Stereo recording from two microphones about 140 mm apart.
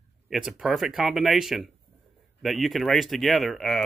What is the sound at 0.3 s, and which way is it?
Speech, centre (ahead or behind).